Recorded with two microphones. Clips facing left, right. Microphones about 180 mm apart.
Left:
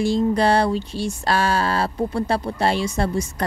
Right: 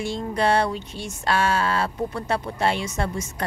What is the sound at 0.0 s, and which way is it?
Music, 35° left (ahead or behind).